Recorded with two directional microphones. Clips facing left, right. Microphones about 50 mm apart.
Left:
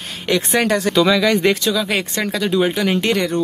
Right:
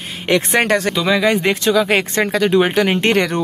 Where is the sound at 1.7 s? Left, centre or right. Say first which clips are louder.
Right 5 dB; right.